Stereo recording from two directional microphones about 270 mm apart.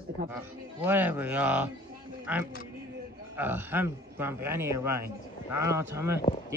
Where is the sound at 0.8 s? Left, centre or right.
Centre.